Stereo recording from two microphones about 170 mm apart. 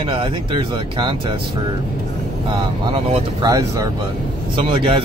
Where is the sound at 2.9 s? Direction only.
35° right (ahead or behind).